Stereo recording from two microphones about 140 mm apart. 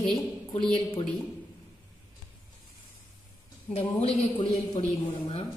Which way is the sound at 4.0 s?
45° left (ahead or behind).